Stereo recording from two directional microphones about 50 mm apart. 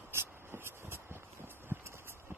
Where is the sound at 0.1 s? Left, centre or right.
Right.